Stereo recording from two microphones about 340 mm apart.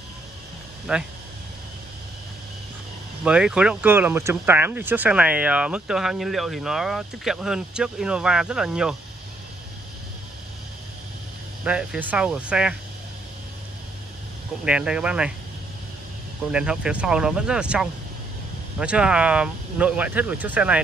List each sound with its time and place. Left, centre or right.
0.9 s speech: centre
3.3 s speech: centre
11.6 s speech: centre
14.6 s speech: centre
16.5 s speech: centre